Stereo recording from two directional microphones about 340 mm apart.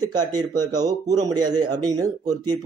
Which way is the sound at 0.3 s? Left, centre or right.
Centre.